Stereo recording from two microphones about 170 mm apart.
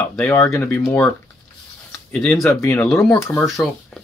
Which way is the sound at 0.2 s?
15° left (ahead or behind).